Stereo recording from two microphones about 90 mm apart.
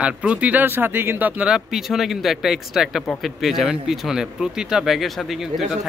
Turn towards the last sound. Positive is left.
turn(degrees=0)  # may be behind; listen again after turning